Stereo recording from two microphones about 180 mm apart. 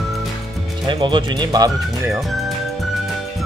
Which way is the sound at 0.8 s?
25° right (ahead or behind).